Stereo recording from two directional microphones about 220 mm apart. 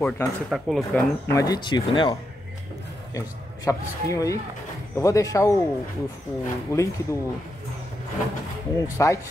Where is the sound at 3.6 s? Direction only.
15° left (ahead or behind).